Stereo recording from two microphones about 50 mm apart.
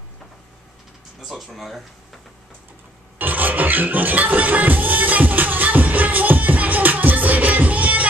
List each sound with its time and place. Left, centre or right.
1.2 s speech: centre
3.2 s music: right